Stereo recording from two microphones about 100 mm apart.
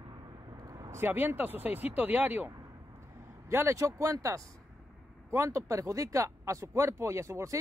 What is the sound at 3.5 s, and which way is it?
Speech, 30° right (ahead or behind).